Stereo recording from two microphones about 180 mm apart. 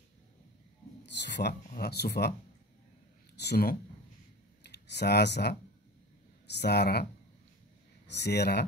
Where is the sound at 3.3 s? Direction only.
65° left (ahead or behind).